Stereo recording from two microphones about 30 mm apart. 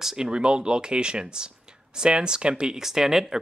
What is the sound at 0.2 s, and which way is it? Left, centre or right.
Speech, right.